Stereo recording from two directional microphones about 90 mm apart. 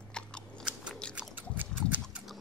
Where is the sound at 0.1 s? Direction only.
10° left (ahead or behind).